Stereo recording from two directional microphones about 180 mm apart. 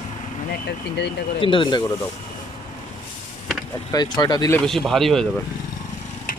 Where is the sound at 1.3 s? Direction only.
30° left (ahead or behind).